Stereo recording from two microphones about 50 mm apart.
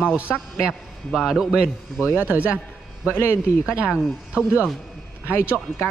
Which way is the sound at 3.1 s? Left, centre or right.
Left.